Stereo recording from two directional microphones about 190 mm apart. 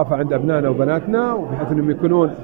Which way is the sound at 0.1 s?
55° right (ahead or behind).